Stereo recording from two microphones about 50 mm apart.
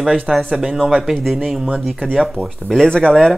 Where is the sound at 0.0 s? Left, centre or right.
Centre.